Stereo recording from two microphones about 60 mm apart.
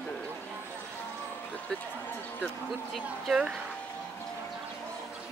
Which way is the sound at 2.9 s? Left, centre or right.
Centre.